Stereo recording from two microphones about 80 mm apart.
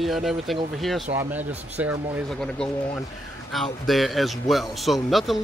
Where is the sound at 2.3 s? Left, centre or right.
Centre.